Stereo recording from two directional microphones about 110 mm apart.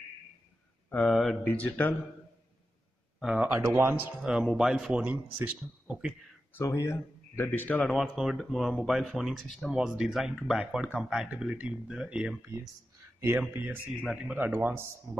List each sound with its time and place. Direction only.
0.8 s speech: 15° left (ahead or behind)
1.1 s speech: centre (ahead or behind)
1.4 s speech: 15° left (ahead or behind)
3.3 s speech: 20° right (ahead or behind)
4.2 s speech: 5° right (ahead or behind)
6.6 s speech: 30° left (ahead or behind)
7.9 s speech: centre (ahead or behind)
12.4 s speech: 25° right (ahead or behind)
14.0 s speech: 5° right (ahead or behind)
14.3 s speech: 20° right (ahead or behind)